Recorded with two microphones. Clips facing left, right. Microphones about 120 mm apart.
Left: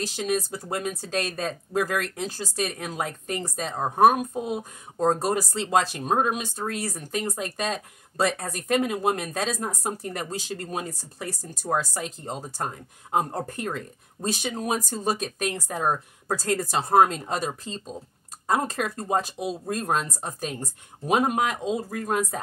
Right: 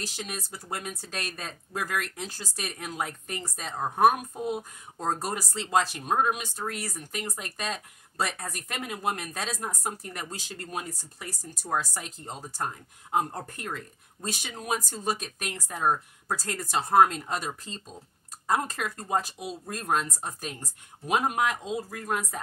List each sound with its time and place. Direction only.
0.0 s speech: 25° left (ahead or behind)